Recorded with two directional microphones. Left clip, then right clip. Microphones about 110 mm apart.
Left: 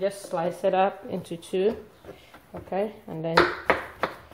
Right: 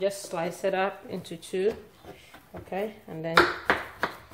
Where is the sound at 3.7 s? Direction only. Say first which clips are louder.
Left 2 dB; 10° right (ahead or behind).